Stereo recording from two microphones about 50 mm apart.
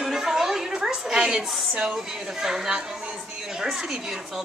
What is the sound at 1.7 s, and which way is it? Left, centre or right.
A woman's voice, centre.